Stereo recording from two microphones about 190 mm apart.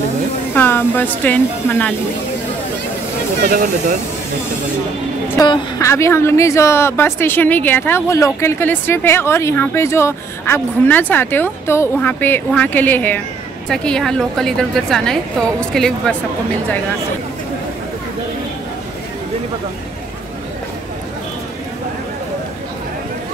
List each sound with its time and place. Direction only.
0.6 s a woman's voice: 10° left (ahead or behind)
3.4 s speech: 45° right (ahead or behind)
5.4 s a woman's voice: 20° left (ahead or behind)